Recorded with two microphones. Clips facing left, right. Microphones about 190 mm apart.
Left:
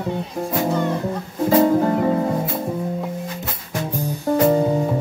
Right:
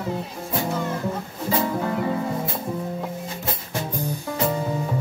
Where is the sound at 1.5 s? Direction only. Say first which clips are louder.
Left 8 dB; 40° left (ahead or behind).